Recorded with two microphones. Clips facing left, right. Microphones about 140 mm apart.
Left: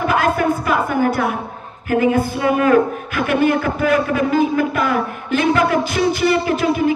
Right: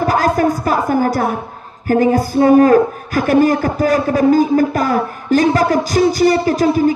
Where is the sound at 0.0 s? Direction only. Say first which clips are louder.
Right 3 dB; 40° right (ahead or behind).